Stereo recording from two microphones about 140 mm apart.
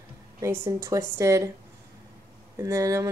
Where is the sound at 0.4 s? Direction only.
20° right (ahead or behind).